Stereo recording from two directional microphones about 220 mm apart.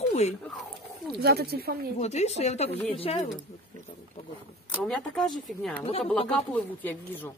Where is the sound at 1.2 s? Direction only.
45° right (ahead or behind).